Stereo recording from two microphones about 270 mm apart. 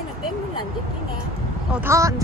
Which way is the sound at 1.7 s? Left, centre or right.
Centre.